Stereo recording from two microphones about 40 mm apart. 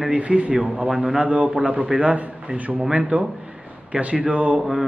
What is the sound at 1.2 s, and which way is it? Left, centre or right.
A man's voice, right.